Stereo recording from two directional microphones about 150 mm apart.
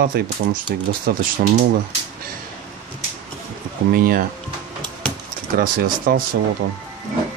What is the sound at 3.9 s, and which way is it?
Speech, 80° right.